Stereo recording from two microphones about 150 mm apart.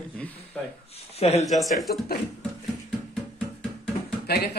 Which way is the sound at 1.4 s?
Centre (ahead or behind).